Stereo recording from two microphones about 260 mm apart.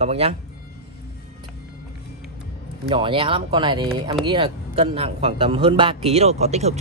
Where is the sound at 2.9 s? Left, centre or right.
Centre.